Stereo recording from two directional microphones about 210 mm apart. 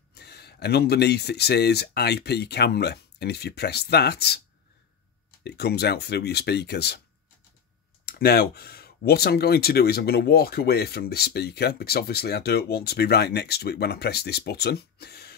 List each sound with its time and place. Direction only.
0.1 s speech: 50° left (ahead or behind)
5.4 s speech: 50° left (ahead or behind)
8.0 s speech: 45° left (ahead or behind)